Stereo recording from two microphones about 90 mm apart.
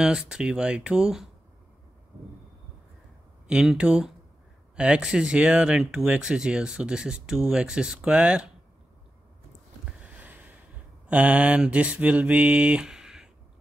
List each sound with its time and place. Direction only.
0.0 s speech: 5° right (ahead or behind)
3.4 s speech: 10° right (ahead or behind)
9.8 s sniff: 15° right (ahead or behind)
11.1 s speech: 15° right (ahead or behind)